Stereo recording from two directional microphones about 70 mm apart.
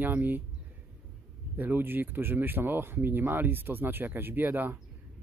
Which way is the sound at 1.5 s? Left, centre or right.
Right.